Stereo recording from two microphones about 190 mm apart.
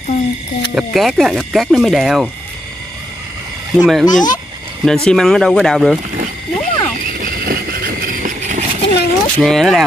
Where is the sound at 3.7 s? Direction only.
Centre (ahead or behind).